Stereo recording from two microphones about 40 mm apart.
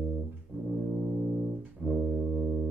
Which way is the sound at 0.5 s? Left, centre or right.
Right.